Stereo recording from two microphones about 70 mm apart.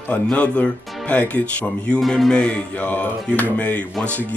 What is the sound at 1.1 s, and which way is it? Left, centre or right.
Speech, centre.